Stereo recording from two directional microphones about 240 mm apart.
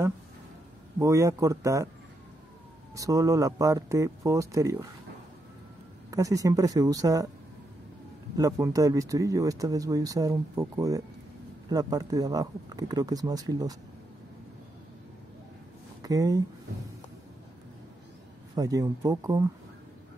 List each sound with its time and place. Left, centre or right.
0.9 s speech: centre
3.0 s speech: centre
6.0 s speech: centre
8.4 s speech: centre
16.0 s speech: centre
18.5 s speech: centre